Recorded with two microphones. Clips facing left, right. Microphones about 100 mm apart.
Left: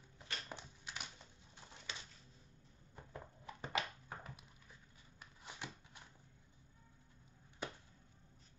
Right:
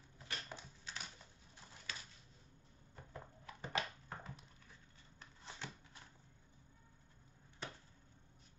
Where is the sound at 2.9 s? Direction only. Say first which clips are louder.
Left 1 dB; 20° left (ahead or behind).